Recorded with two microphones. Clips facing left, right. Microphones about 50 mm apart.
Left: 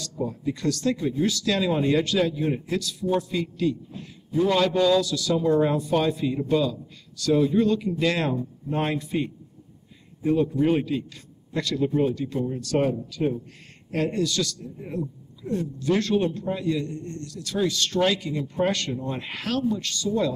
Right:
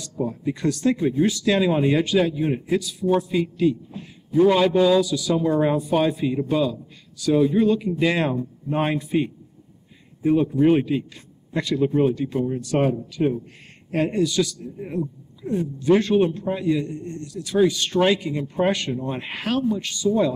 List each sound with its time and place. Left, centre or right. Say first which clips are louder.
0.2 s speech: right 3 dB; centre